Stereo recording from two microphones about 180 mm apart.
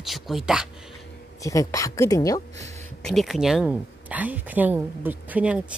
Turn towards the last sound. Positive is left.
turn(degrees=-10)  # may be behind; listen again after turning